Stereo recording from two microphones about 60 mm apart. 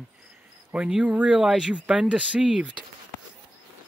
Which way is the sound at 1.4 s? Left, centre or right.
Centre.